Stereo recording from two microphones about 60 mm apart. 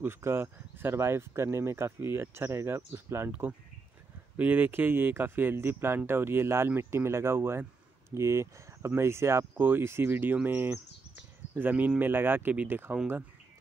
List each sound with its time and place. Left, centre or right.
0.0 s speech: right
4.4 s speech: right